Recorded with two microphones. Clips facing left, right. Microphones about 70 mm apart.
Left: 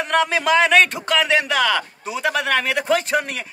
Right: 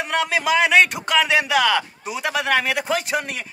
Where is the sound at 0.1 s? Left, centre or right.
Centre.